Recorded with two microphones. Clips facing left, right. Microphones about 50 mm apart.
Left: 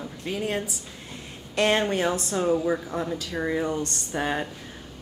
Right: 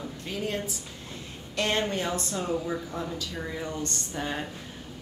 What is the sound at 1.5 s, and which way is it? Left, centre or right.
Speech, left.